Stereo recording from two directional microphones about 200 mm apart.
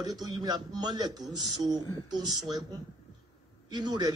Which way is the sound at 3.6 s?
20° right (ahead or behind).